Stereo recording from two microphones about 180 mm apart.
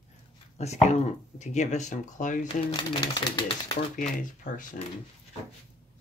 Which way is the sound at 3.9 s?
45° left (ahead or behind).